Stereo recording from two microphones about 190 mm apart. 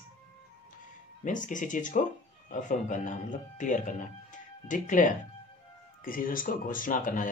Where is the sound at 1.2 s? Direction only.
40° left (ahead or behind).